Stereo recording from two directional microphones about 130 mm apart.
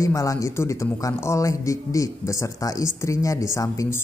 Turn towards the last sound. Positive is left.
turn(degrees=20)  # may be behind; listen again after turning